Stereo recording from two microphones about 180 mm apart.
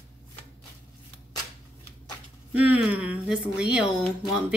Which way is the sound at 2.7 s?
10° right (ahead or behind).